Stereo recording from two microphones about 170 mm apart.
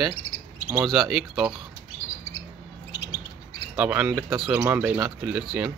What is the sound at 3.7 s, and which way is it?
Speech, 10° right (ahead or behind).